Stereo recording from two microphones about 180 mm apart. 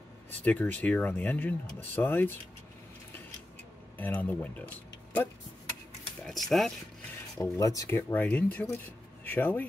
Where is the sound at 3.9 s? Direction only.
10° left (ahead or behind).